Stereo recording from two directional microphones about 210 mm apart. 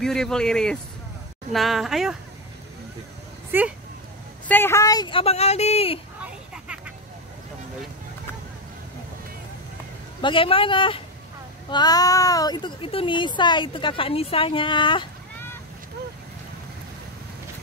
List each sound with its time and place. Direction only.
0.0 s a man's voice: 5° left (ahead or behind)
3.5 s speech: 10° right (ahead or behind)
4.5 s speech: 10° left (ahead or behind); by 5.9 s 30° left (ahead or behind)
6.2 s a sound: 5° right (ahead or behind)
10.2 s speech: 25° left (ahead or behind)